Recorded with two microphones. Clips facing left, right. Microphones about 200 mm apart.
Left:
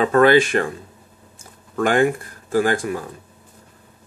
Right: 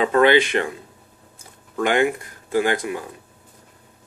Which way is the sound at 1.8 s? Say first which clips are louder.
Left 2 dB; 45° left (ahead or behind).